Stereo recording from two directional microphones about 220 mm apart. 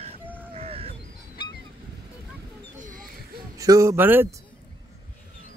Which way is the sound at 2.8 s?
35° right (ahead or behind).